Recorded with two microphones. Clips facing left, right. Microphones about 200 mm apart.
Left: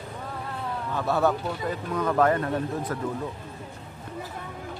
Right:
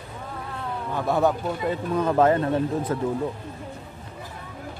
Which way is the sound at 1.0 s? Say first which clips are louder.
Right 2 dB; 15° right (ahead or behind).